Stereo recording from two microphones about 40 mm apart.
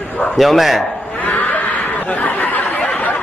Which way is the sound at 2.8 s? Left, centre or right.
Left.